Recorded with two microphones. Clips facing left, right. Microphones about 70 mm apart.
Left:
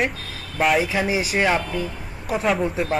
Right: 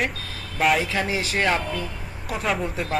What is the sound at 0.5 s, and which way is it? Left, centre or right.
Speech, centre.